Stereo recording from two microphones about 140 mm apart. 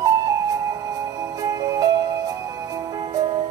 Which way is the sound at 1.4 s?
25° right (ahead or behind).